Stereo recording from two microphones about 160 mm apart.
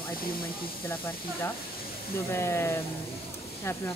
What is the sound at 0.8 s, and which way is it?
Speech, 15° left (ahead or behind).